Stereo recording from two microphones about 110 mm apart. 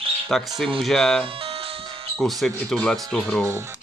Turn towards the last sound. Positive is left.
turn(degrees=-25)  # may be behind; listen again after turning